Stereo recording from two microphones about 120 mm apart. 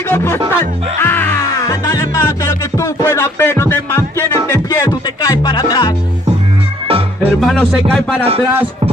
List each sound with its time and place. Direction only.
0.1 s music: 20° left (ahead or behind)
1.7 s music: 30° left (ahead or behind)
4.6 s music: 30° left (ahead or behind)
7.2 s music: 5° left (ahead or behind)